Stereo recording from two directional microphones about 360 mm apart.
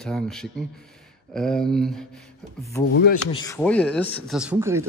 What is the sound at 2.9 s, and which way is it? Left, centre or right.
Speech, left.